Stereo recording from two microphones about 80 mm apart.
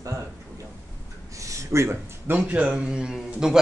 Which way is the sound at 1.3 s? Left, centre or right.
Right.